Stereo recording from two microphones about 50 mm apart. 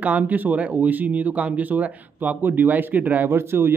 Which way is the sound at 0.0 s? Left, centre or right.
Right.